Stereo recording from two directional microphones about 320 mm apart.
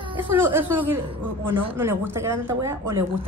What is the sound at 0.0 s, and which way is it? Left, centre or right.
A woman's voice, centre.